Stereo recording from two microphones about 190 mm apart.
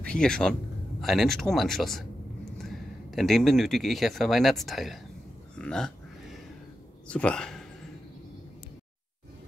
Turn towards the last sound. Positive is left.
turn(degrees=5)  # may be behind; listen again after turning